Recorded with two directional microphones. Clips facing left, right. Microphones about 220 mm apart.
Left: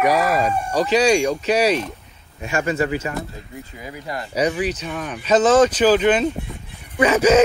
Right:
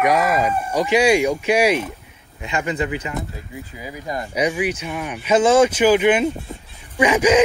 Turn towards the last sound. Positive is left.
turn(degrees=-15)  # may be behind; listen again after turning